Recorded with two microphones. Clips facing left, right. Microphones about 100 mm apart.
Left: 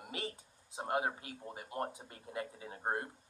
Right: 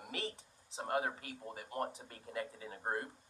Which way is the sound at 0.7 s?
20° left (ahead or behind).